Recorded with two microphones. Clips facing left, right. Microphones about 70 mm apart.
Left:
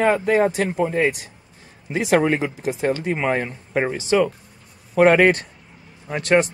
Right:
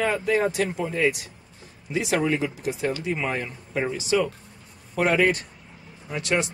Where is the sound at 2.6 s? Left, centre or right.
Left.